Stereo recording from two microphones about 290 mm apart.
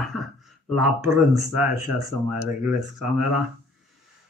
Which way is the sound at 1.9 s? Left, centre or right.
Right.